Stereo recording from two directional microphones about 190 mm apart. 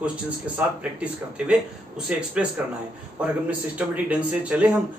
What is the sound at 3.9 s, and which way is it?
Speech, 5° right (ahead or behind).